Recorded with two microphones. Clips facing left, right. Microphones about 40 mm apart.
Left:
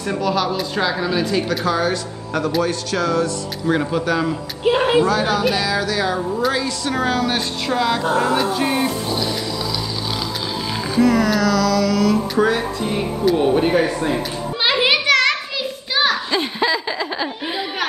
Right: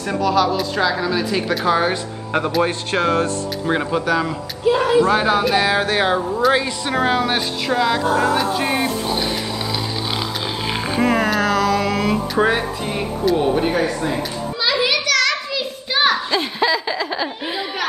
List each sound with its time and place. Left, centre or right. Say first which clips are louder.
0.0 s speech: right 2 dB; centre
1.7 s a woman's voice: right 2 dB; right
3.6 s speech: left 1 dB; centre
4.0 s speech: even; centre
4.6 s speech: even; left
5.0 s speech: right 1 dB; right
6.5 s a woman's voice: right 2 dB; right
7.3 s speech: right 1 dB; centre
8.7 s a woman's voice: even; right
11.0 s speech: left 2 dB; right
12.8 s speech: left 1 dB; centre
14.6 s children playing: left 2 dB; left
15.9 s a sound: right 1 dB; centre
16.3 s laughter: right 1 dB; centre